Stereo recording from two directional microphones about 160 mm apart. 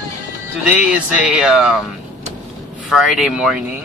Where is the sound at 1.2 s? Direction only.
5° right (ahead or behind).